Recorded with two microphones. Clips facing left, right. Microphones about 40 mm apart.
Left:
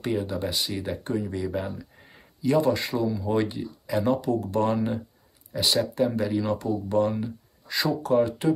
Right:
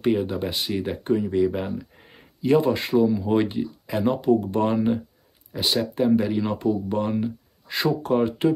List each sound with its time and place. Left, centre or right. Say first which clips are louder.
0.3 s speech: right 2 dB; right
2.4 s speech: right 2 dB; right
3.1 s speech: right 4 dB; centre
7.7 s speech: right 1 dB; right